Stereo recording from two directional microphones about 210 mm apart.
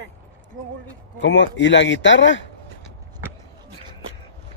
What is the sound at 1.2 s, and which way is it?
Speech, 55° left (ahead or behind).